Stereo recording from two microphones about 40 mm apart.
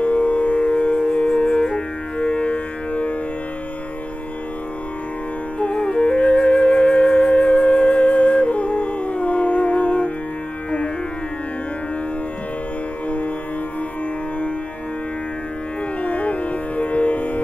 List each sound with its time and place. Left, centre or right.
0.0 s music: left
5.6 s music: left
16.0 s music: left